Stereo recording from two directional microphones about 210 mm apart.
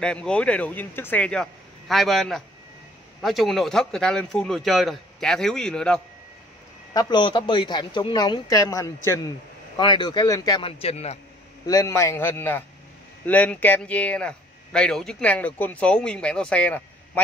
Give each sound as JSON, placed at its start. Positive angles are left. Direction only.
{"t": 0.0, "sound": "a man's voice", "side_deg": 5}
{"t": 6.9, "sound": "speech", "side_deg": 20}
{"t": 11.6, "sound": "a man's voice", "side_deg": 15}